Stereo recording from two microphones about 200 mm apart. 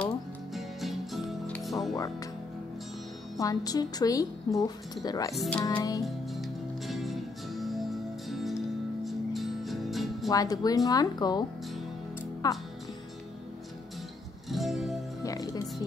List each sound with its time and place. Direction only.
0.6 s music: centre (ahead or behind)
2.0 s a woman's voice: 15° left (ahead or behind)
3.3 s a woman's voice: 20° left (ahead or behind)
5.3 s speech: centre (ahead or behind)
5.8 s a woman's voice: 15° left (ahead or behind)
6.0 s music: centre (ahead or behind)
10.3 s speech: 20° left (ahead or behind)
12.4 s speech: 20° left (ahead or behind)
14.5 s music: centre (ahead or behind)
15.2 s music: 15° left (ahead or behind)